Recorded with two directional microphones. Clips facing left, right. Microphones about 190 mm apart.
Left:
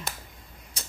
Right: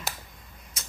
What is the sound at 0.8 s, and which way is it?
Typewriter, 30° left (ahead or behind).